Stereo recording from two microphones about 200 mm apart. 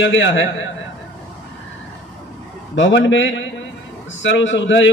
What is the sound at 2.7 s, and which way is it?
A man's voice, 65° left (ahead or behind).